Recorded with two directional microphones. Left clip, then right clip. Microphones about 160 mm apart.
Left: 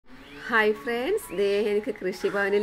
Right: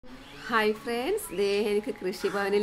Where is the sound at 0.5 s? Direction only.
5° left (ahead or behind).